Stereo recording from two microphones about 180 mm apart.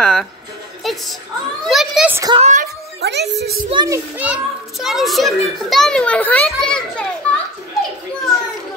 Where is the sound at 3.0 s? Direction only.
70° right (ahead or behind).